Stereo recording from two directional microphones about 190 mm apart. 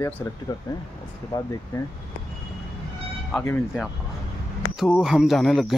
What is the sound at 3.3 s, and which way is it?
Speech, 10° left (ahead or behind).